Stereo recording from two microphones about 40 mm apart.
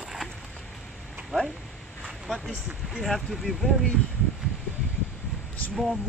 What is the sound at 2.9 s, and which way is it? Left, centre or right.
Speech, centre.